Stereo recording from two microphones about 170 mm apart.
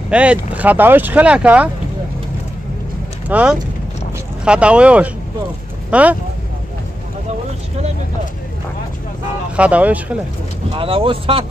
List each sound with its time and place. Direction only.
0.1 s speech: 5° right (ahead or behind)
3.3 s speech: 10° right (ahead or behind)
9.6 s speech: 10° right (ahead or behind)
10.8 s speech: 30° right (ahead or behind)